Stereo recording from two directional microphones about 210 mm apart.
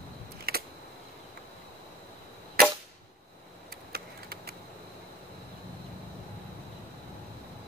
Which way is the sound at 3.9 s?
50° right (ahead or behind).